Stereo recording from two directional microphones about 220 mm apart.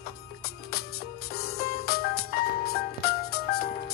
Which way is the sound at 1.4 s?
45° left (ahead or behind).